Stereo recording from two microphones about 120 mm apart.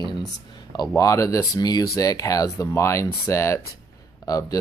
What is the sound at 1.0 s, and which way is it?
Speech, 30° left (ahead or behind).